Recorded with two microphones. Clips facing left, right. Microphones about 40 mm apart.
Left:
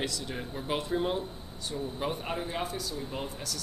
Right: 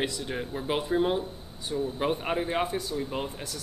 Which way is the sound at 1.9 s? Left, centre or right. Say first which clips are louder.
Right 5 dB; right.